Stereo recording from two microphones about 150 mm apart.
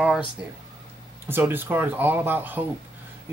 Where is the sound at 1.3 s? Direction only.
15° right (ahead or behind).